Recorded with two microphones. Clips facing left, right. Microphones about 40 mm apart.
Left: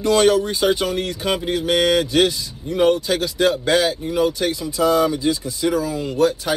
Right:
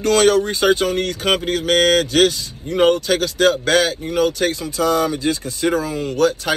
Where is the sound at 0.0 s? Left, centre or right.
Right.